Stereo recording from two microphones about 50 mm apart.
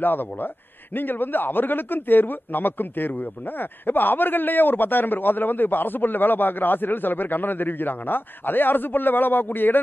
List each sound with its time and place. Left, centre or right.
0.0 s a man's voice: left